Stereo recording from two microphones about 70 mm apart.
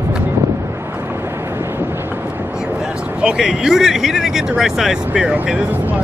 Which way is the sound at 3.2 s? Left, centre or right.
Centre.